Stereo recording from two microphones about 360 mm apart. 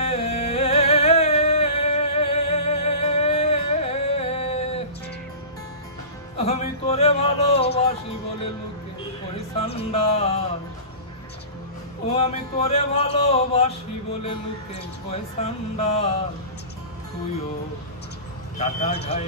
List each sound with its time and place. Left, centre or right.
0.0 s music: centre
6.3 s speech: centre
9.6 s speech: centre
12.1 s speech: centre
18.6 s speech: centre